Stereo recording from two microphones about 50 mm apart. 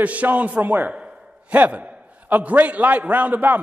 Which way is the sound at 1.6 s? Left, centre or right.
Right.